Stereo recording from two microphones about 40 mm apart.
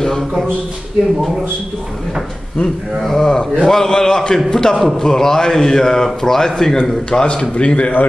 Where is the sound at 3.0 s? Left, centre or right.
Centre; by 7.9 s left.